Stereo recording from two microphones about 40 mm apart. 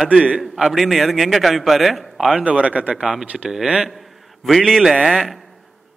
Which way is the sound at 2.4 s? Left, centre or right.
Right.